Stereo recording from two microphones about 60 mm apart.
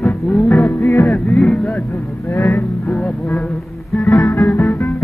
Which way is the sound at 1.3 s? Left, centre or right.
Centre.